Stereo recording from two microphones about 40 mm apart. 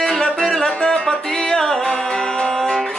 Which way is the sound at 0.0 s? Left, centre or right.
Centre.